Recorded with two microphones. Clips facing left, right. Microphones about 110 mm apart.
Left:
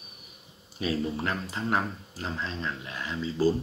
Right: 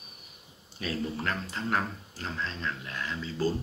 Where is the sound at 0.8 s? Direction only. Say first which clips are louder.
Left 4 dB; 10° left (ahead or behind).